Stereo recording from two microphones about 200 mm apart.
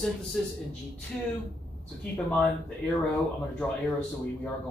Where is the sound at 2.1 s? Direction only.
5° left (ahead or behind).